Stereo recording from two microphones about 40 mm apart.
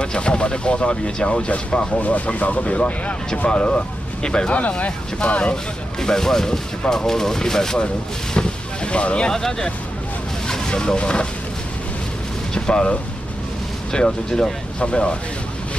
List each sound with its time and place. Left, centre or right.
0.0 s speech: left
2.0 s speech: left
4.6 s speech: left
5.3 s speech: left
8.4 s boat: left
9.3 s speech: centre
12.5 s speech: left
13.9 s speech: centre